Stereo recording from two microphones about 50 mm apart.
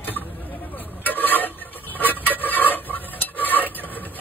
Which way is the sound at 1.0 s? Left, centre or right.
Left.